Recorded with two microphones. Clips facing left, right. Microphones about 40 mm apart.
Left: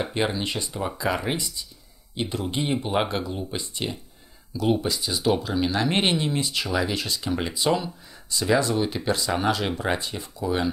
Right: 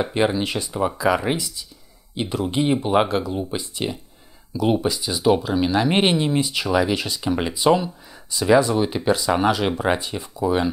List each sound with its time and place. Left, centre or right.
0.0 s speech: centre
1.0 s speech: centre
2.3 s speech: centre